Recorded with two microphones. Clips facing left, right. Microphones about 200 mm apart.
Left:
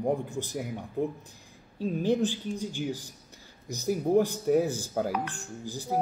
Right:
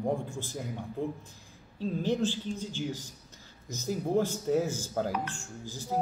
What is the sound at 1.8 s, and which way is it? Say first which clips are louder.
A man's voice: left 3 dB; 15° left (ahead or behind).